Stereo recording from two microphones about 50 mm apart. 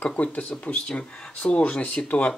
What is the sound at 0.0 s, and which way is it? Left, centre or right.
Speech, left.